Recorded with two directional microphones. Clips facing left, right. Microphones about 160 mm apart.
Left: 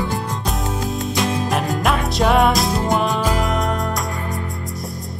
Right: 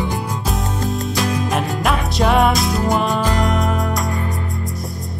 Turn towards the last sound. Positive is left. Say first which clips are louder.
# right 1 dB
turn(degrees=5)  # may be behind; listen again after turning